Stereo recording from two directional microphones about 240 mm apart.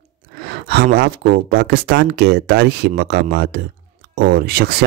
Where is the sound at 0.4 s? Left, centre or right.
Right.